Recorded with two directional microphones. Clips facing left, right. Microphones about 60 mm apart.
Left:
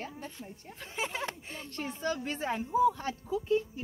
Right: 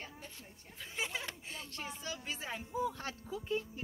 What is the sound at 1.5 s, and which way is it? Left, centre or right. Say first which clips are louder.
Speech: left 5 dB; left.